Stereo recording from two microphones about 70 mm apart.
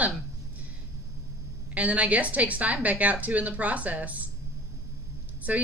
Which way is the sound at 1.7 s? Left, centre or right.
Right.